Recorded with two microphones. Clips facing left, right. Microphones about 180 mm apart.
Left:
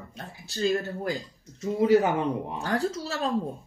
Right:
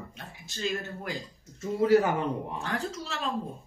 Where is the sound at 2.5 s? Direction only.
35° left (ahead or behind).